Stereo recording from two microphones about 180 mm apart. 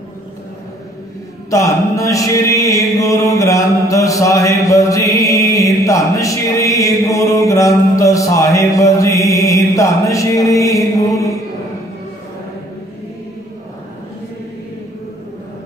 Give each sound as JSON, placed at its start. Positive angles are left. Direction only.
{"t": 1.5, "sound": "mantra", "side_deg": 15}